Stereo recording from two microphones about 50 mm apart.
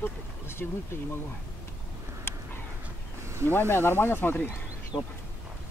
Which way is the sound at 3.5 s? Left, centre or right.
Left.